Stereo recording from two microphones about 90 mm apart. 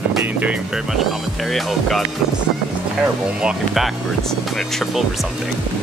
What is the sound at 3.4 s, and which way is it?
Speech, 10° right (ahead or behind).